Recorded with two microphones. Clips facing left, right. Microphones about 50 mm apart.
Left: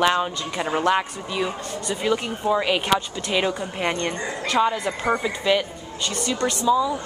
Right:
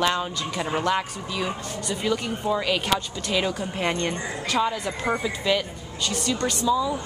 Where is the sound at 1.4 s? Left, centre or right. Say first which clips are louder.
Left 2 dB; centre.